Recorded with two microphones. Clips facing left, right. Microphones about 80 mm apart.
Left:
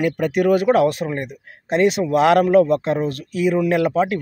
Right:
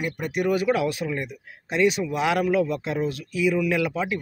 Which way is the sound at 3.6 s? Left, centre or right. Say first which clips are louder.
Left 7 dB; left.